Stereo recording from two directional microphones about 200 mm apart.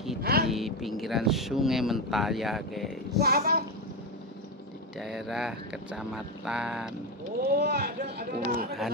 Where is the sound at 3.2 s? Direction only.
50° right (ahead or behind).